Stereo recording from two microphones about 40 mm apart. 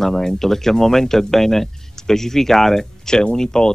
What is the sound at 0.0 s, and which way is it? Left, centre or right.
Speech, centre.